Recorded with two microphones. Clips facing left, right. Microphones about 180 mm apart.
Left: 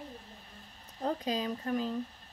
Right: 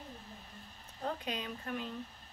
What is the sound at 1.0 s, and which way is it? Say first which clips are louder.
Speech: left 6 dB; 35° left (ahead or behind).